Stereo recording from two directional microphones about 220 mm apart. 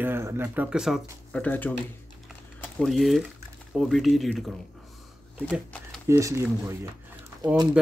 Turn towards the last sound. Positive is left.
turn(degrees=-20)  # may be behind; listen again after turning